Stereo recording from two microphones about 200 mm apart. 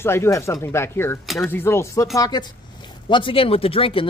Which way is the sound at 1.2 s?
Centre (ahead or behind).